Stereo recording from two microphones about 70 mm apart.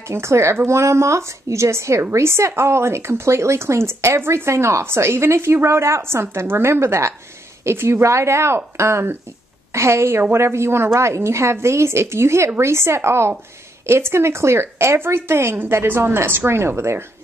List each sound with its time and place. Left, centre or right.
0.1 s a woman's voice: right